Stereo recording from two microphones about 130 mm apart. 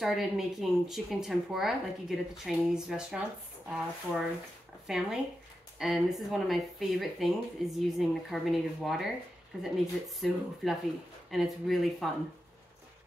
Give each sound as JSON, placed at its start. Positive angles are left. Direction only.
{"t": 0.0, "sound": "speech", "side_deg": 0}